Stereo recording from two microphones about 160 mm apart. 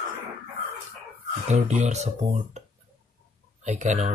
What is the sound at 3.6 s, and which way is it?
Speech, 45° right (ahead or behind).